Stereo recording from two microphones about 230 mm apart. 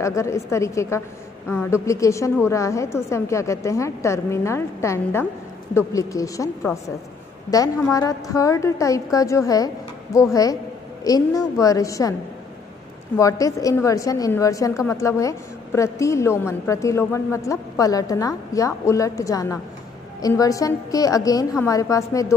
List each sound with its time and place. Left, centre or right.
0.0 s a woman's voice: centre
13.2 s a woman's voice: centre